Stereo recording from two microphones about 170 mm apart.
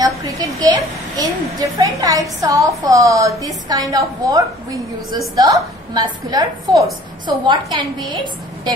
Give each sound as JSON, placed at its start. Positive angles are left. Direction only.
{"t": 0.6, "sound": "a child's voice", "side_deg": -20}